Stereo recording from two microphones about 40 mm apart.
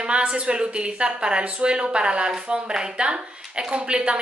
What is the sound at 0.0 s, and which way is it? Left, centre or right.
Speech, right.